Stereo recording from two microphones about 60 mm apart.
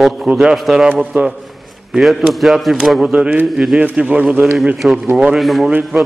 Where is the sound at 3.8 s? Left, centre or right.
Right.